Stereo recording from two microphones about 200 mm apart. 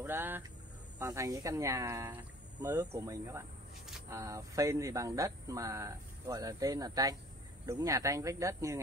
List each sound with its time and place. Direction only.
0.0 s speech: 10° right (ahead or behind)